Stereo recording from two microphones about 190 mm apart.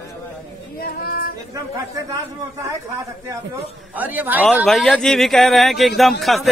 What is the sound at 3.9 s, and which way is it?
Speech, 10° right (ahead or behind).